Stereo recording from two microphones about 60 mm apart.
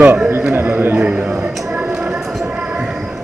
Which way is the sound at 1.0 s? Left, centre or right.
Centre.